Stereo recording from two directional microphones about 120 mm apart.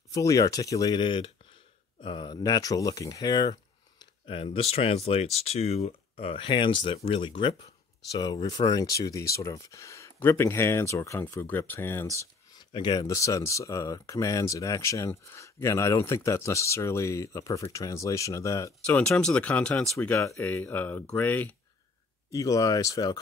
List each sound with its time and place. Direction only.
0.1 s speech: 30° left (ahead or behind)
4.0 s speech: 45° left (ahead or behind)
8.1 s speech: 35° left (ahead or behind); by 12.2 s 20° left (ahead or behind)
12.5 s a sound: 40° left (ahead or behind)
13.0 s speech: 25° left (ahead or behind)
18.9 s speech: 10° left (ahead or behind)
22.3 s speech: 30° left (ahead or behind)